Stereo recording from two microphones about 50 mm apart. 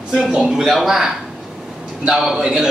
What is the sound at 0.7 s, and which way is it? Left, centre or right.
Speech, centre.